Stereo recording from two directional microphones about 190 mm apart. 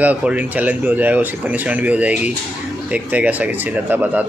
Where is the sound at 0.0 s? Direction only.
5° right (ahead or behind).